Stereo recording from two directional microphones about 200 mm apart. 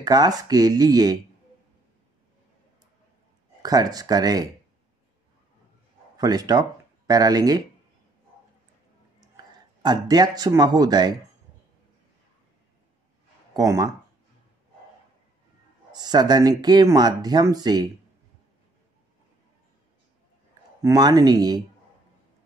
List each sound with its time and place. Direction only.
0.0 s speech: 20° right (ahead or behind)
3.6 s speech: 20° right (ahead or behind)
6.1 s speech: 20° right (ahead or behind)
9.2 s speech: 20° right (ahead or behind)
13.5 s speech: 20° right (ahead or behind)
15.9 s speech: 20° right (ahead or behind)
20.8 s speech: 20° right (ahead or behind)